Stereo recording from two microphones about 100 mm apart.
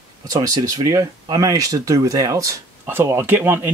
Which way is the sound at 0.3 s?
35° right (ahead or behind).